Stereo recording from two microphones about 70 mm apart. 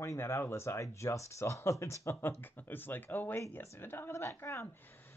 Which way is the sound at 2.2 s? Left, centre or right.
Left.